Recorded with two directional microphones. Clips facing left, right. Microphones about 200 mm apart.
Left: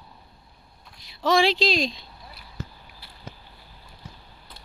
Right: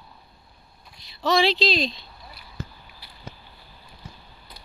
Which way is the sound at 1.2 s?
10° left (ahead or behind).